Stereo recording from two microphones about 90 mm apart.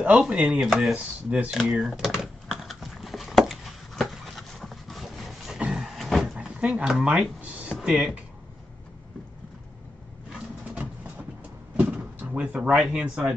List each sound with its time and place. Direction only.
0.0 s chopping: 10° right (ahead or behind)
1.6 s typing: centre (ahead or behind)
5.6 s a sound: 5° right (ahead or behind)
6.3 s speech: 10° right (ahead or behind)
11.7 s door: 15° right (ahead or behind)
12.7 s chopping: 10° right (ahead or behind)